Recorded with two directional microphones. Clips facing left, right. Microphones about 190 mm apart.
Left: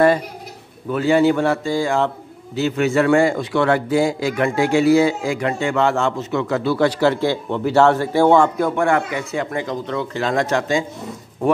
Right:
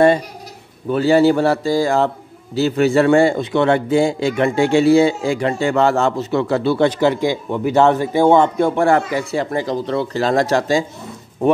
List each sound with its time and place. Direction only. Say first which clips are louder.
0.8 s a man's voice: right 2 dB; 35° right (ahead or behind)